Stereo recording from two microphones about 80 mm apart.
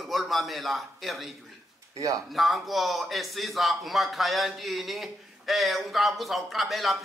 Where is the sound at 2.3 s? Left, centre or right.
Centre.